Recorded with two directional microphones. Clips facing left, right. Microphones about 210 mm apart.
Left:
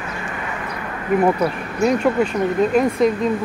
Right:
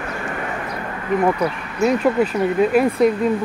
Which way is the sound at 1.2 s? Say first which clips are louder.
Left 1 dB; centre (ahead or behind).